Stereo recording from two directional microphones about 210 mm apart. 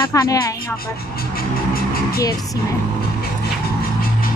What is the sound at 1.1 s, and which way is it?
Vehicle, 45° left (ahead or behind).